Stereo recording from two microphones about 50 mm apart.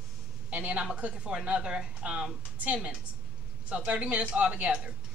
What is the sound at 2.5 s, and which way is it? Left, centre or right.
A man's voice, right.